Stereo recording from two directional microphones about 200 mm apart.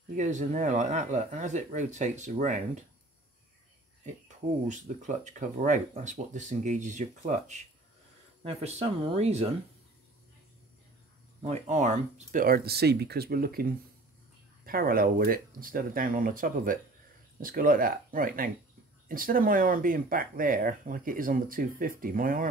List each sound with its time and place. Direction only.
0.1 s speech: 40° right (ahead or behind)
4.6 s speech: 35° right (ahead or behind)
11.4 s speech: 30° right (ahead or behind)